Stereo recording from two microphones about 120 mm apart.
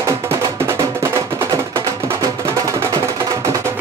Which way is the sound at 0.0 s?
25° right (ahead or behind).